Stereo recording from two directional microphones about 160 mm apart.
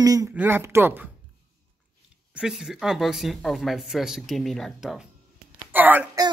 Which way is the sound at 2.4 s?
5° right (ahead or behind).